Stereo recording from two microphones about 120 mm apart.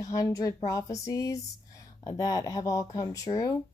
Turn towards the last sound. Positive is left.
turn(degrees=30)  # may be behind; listen again after turning